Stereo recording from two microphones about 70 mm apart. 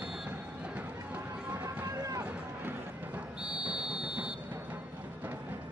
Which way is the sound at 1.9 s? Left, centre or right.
Right.